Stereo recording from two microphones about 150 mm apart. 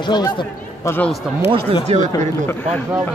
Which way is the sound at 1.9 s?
45° right (ahead or behind).